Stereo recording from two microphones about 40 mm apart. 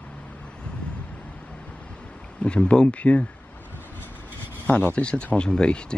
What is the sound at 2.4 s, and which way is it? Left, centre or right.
Speech, left.